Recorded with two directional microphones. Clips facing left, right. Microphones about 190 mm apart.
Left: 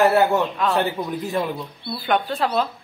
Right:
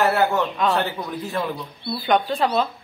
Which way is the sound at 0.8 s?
20° left (ahead or behind).